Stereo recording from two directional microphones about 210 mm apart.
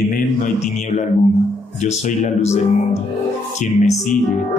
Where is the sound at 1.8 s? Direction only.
35° left (ahead or behind).